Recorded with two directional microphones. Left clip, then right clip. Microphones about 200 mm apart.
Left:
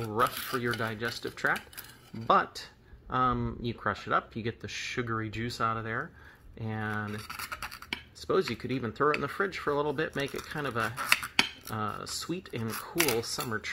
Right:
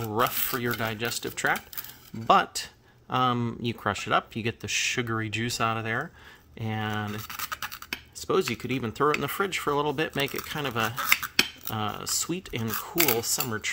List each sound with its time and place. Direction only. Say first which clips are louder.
0.1 s rub: right 2 dB; 30° right (ahead or behind)
2.2 s speech: right 4 dB; 30° right (ahead or behind)
6.6 s rub: right 4 dB; 25° right (ahead or behind)
7.2 s scratch: right 4 dB; 10° right (ahead or behind)
8.3 s rub: right 3 dB; 30° right (ahead or behind)
9.2 s speech: right 3 dB; 35° right (ahead or behind)
11.0 s cutlery: right 2 dB; 10° right (ahead or behind)
11.7 s rub: right 6 dB; 30° right (ahead or behind)